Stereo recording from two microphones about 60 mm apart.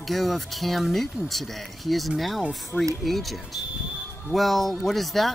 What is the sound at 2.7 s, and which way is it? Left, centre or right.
Speech, left.